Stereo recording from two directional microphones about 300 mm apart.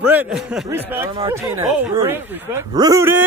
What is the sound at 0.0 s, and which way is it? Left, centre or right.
Speech, centre.